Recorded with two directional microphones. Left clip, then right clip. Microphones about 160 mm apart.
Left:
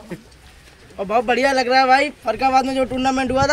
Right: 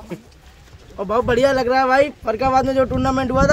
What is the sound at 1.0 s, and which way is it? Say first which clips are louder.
Speech: right 1 dB; 65° right (ahead or behind).